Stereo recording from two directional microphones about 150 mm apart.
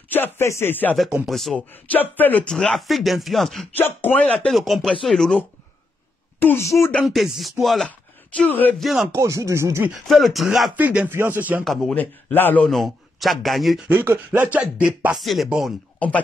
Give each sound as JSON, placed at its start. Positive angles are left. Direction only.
{"t": 0.1, "sound": "speech", "side_deg": 15}
{"t": 0.9, "sound": "a man's voice", "side_deg": 0}
{"t": 3.7, "sound": "a man's voice", "side_deg": 15}
{"t": 6.4, "sound": "speech", "side_deg": 15}
{"t": 6.9, "sound": "a man's voice", "side_deg": 5}
{"t": 8.4, "sound": "speech", "side_deg": 10}
{"t": 9.1, "sound": "speech", "side_deg": -20}
{"t": 10.0, "sound": "speech", "side_deg": 0}
{"t": 11.6, "sound": "a man's voice", "side_deg": 5}
{"t": 13.8, "sound": "a man's voice", "side_deg": -10}
{"t": 16.0, "sound": "speech", "side_deg": 10}